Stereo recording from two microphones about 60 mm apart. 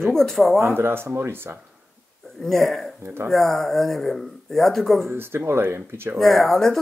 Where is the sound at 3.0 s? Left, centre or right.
Right.